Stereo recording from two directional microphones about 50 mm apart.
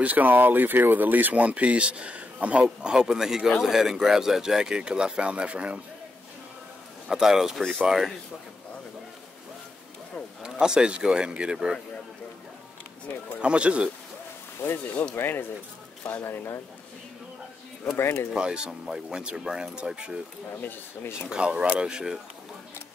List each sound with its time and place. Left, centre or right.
0.0 s speech: right
2.6 s speech: centre
7.1 s speech: centre
10.4 s speech: centre
11.5 s speech: centre
13.4 s speech: right
15.1 s speech: left
16.0 s speech: left
17.9 s speech: left
18.3 s speech: centre
20.6 s speech: left
21.3 s speech: centre